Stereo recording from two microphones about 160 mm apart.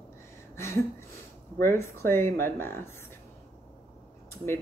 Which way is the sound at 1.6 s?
15° left (ahead or behind).